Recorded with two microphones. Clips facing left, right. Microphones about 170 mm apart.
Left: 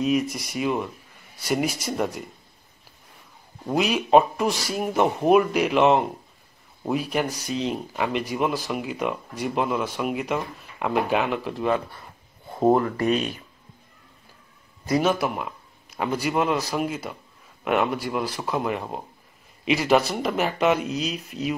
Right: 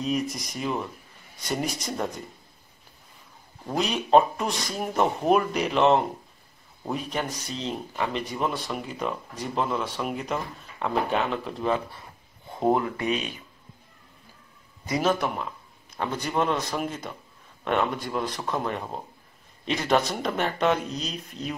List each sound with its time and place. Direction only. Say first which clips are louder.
0.0 s speech: left 4 dB; 5° left (ahead or behind)
3.6 s speech: left 4 dB; 5° left (ahead or behind)
12.9 s speech: left 5 dB; 45° left (ahead or behind)
15.0 s a man's voice: left 2 dB; 5° left (ahead or behind)